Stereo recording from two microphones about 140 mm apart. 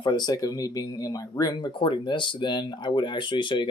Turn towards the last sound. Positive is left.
turn(degrees=35)  # may be behind; listen again after turning